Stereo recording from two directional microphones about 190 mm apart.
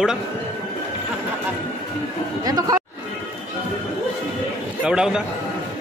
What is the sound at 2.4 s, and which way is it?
Speech, 20° right (ahead or behind).